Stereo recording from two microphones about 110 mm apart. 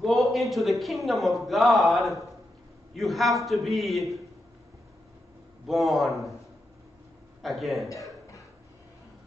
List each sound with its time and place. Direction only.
0.0 s a man's voice: centre (ahead or behind)
5.7 s a man's voice: centre (ahead or behind)
7.4 s a man's voice: centre (ahead or behind)
7.9 s a sound: 30° left (ahead or behind)